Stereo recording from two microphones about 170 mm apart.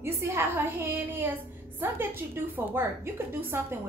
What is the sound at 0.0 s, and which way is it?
A woman's voice, 15° right (ahead or behind).